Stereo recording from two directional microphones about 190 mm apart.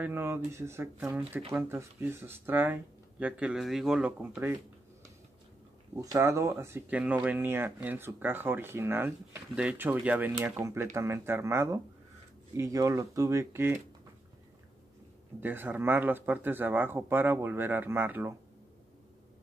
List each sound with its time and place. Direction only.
0.0 s speech: 10° right (ahead or behind)
5.9 s speech: 15° right (ahead or behind)
15.4 s speech: 10° right (ahead or behind)